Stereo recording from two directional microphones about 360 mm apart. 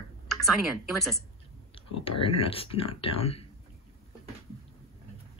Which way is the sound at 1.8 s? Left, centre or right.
Centre.